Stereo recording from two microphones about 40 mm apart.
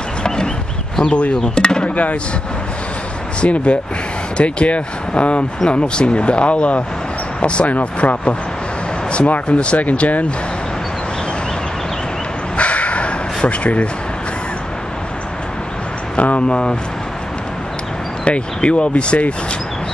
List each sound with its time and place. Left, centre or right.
1.0 s speech: left
3.3 s speech: left
12.5 s bow-wow: left
16.2 s speech: left
18.2 s speech: left